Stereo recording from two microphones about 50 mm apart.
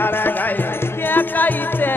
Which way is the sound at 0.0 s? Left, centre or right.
Left.